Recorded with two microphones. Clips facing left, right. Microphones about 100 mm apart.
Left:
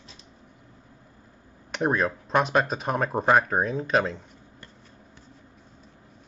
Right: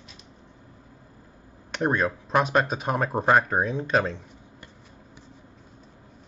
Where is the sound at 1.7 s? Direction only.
Centre (ahead or behind).